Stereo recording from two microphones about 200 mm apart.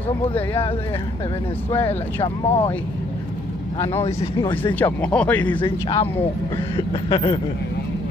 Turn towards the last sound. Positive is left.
turn(degrees=25)  # may be behind; listen again after turning